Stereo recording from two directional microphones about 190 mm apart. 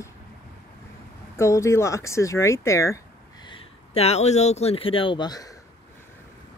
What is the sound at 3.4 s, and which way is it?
Speech, 30° left (ahead or behind).